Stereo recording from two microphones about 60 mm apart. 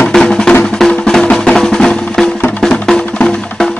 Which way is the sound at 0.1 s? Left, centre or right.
Centre.